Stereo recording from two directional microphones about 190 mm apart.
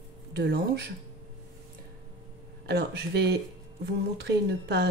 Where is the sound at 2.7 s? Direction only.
60° right (ahead or behind).